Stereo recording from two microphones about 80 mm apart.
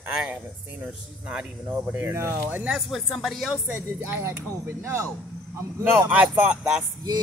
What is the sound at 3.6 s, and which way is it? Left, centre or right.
Speech, right.